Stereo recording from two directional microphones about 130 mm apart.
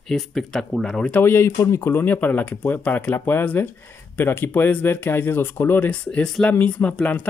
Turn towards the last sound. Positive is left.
turn(degrees=10)  # may be behind; listen again after turning